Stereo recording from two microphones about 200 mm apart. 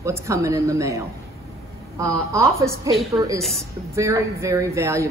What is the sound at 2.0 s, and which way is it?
A woman's voice, 15° right (ahead or behind).